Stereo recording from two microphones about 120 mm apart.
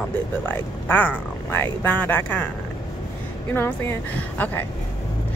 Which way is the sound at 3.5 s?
20° left (ahead or behind).